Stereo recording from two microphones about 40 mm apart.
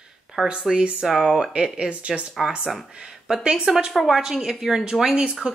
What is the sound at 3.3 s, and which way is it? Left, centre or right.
A woman's voice, centre.